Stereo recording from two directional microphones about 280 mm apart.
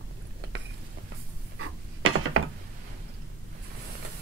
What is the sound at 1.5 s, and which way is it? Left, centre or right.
Wood, right.